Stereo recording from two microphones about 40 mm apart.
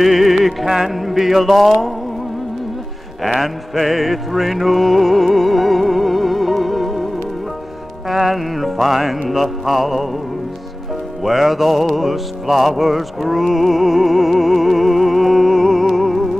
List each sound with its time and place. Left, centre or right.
0.0 s music: centre
3.2 s music: centre
8.1 s music: centre
11.2 s music: centre